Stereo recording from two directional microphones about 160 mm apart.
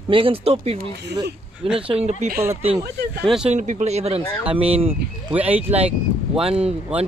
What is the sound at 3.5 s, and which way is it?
Speech, 50° right (ahead or behind).